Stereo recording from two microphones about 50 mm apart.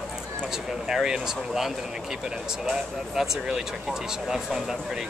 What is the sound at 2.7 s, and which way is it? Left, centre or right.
Speech, centre.